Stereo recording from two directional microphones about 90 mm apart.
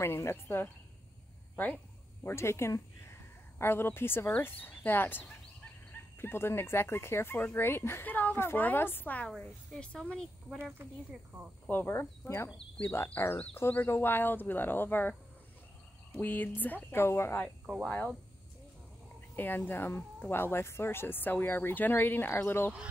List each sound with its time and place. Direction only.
0.0 s speech: 30° left (ahead or behind)
2.2 s speech: 30° left (ahead or behind)
6.2 s speech: 25° left (ahead or behind); by 10.6 s 10° left (ahead or behind)
10.8 s speech: 25° right (ahead or behind)
11.7 s speech: 25° left (ahead or behind)
16.2 s speech: 20° left (ahead or behind)
19.3 s speech: 20° left (ahead or behind)